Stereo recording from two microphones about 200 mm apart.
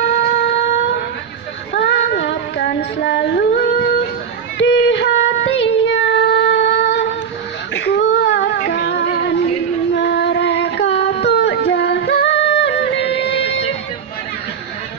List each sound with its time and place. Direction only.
0.0 s a sound: 60° left (ahead or behind)
1.7 s child singing: 65° left (ahead or behind)
7.7 s female singing: 60° left (ahead or behind)
9.0 s music: 45° left (ahead or behind); by 13.7 s 65° left (ahead or behind)